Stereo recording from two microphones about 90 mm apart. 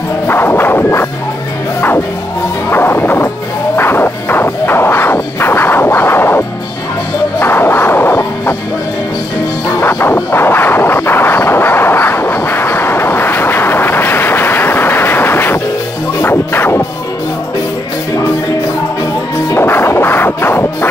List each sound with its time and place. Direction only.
0.3 s a sound: 25° left (ahead or behind)
2.7 s music: 25° left (ahead or behind)
9.8 s vehicle: 25° left (ahead or behind)
16.2 s music: 25° left (ahead or behind)
19.5 s music: 25° left (ahead or behind)